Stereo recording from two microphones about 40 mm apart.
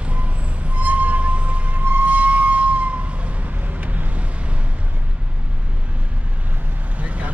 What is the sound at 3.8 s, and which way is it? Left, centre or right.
Vehicle, right.